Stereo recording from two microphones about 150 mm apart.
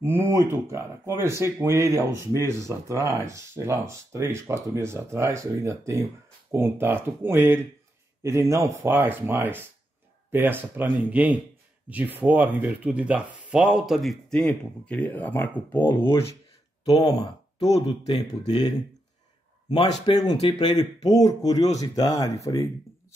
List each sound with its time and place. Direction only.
0.0 s speech: 15° right (ahead or behind); by 18.7 s 25° left (ahead or behind)
19.7 s speech: 45° left (ahead or behind)
20.4 s speech: 25° left (ahead or behind)